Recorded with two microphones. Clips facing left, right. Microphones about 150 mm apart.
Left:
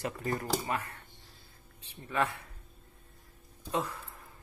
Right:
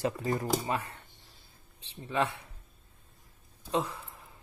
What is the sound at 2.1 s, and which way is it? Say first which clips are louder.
Speech: right 1 dB; 25° right (ahead or behind).